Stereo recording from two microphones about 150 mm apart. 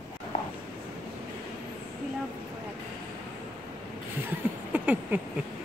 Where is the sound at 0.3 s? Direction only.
45° left (ahead or behind).